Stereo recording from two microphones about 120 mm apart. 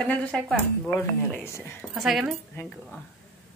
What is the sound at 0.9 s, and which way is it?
Speech, 15° left (ahead or behind).